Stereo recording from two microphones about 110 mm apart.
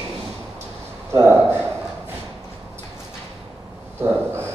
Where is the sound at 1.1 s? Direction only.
25° right (ahead or behind).